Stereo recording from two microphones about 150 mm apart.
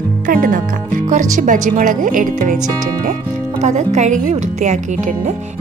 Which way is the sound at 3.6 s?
50° right (ahead or behind).